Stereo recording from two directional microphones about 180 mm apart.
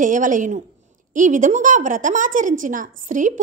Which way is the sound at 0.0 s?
45° right (ahead or behind).